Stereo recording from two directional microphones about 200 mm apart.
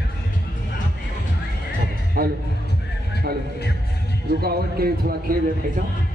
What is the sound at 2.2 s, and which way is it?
Music, 45° right (ahead or behind).